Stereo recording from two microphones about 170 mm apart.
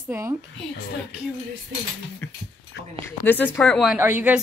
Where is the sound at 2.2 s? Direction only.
15° left (ahead or behind).